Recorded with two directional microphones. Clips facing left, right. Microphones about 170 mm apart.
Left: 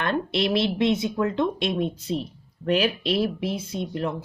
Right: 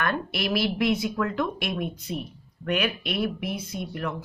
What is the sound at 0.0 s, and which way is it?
Speech, 25° left (ahead or behind).